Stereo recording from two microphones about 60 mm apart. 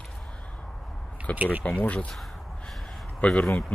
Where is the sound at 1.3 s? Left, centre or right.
Right.